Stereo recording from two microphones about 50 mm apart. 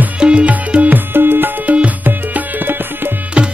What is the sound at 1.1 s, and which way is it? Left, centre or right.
Music, right.